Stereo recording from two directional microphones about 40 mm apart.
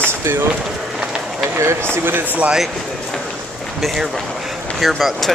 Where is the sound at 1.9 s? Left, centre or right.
Right.